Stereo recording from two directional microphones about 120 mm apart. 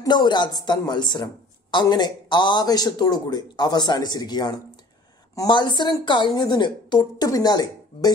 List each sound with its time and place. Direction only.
0.0 s speech: 35° left (ahead or behind)